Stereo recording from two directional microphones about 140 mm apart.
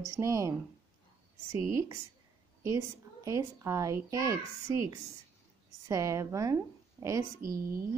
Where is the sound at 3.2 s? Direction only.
25° right (ahead or behind).